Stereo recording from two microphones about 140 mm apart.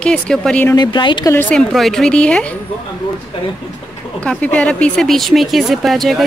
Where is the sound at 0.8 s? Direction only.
35° left (ahead or behind).